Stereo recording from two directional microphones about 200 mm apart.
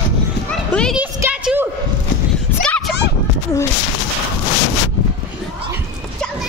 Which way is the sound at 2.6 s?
5° left (ahead or behind).